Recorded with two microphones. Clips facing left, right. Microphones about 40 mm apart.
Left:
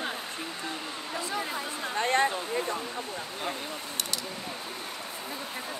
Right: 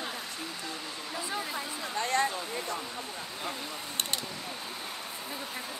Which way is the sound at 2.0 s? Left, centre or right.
Left.